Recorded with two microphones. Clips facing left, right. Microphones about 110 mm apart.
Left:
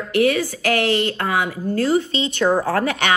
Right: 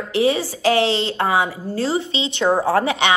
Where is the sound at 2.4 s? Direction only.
25° right (ahead or behind).